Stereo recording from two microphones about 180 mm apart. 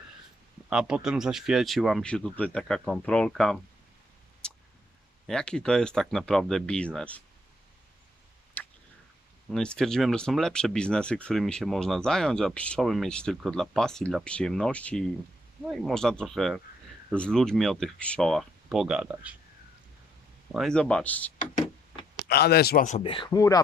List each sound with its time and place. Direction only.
0.7 s speech: 5° right (ahead or behind)
4.4 s a sound: 5° left (ahead or behind)
5.2 s speech: 5° left (ahead or behind)
8.6 s tick-tock: 10° left (ahead or behind)
9.5 s speech: 5° left (ahead or behind)
20.5 s speech: 5° left (ahead or behind)
22.3 s speech: 60° left (ahead or behind)
22.8 s speech: 35° left (ahead or behind)